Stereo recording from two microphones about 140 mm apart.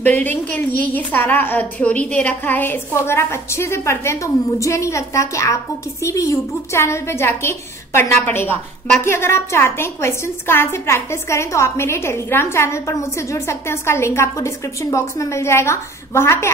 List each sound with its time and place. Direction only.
0.0 s a woman's voice: 10° left (ahead or behind)
6.7 s a woman's voice: 20° left (ahead or behind)